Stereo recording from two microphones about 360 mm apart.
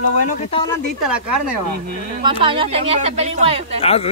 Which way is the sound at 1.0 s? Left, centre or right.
Centre.